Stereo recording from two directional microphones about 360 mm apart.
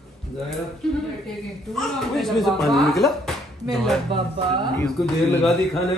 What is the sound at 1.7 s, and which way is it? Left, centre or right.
A man's voice, centre.